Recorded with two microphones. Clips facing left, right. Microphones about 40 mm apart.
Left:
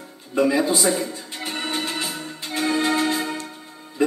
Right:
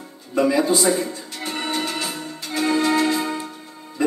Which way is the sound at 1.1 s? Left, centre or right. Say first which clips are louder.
Right 1 dB; left.